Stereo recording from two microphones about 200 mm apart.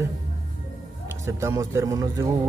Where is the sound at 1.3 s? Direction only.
15° right (ahead or behind).